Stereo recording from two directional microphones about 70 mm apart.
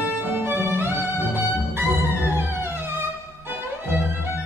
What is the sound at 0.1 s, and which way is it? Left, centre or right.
Music, right.